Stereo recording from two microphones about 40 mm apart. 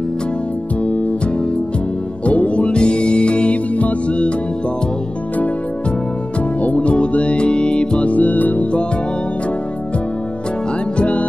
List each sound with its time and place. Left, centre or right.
0.8 s music: left
6.6 s music: left
8.1 s music: left
11.0 s music: left